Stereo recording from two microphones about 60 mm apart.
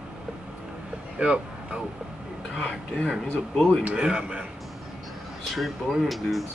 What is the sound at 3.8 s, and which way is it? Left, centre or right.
Speech, centre.